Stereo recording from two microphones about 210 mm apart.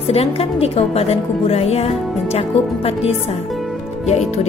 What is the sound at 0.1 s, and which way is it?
A woman's voice, 30° left (ahead or behind).